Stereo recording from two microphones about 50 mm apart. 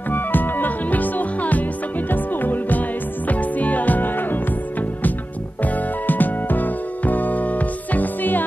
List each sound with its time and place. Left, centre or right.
0.1 s music: left